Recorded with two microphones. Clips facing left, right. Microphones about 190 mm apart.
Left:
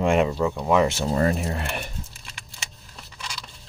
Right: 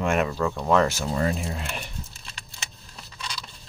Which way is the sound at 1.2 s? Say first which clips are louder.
Left 3 dB; 60° left (ahead or behind).